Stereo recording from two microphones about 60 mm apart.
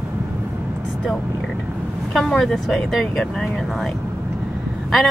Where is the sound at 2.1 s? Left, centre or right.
Centre.